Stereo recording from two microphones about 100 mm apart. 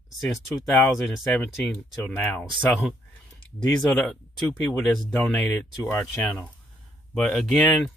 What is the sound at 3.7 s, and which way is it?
Speech, 10° left (ahead or behind).